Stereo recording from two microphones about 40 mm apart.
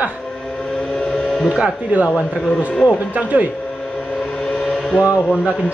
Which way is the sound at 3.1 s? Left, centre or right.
Right.